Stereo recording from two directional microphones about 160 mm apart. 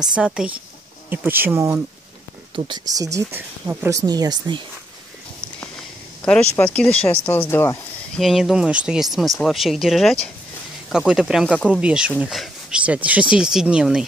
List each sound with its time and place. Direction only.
0.0 s speech: 5° right (ahead or behind)
2.5 s speech: 25° right (ahead or behind)
6.5 s speech: 10° left (ahead or behind)
8.2 s speech: centre (ahead or behind)